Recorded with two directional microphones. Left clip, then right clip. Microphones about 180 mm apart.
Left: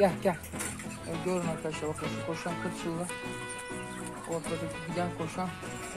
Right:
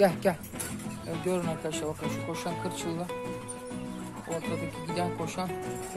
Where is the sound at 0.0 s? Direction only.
15° right (ahead or behind).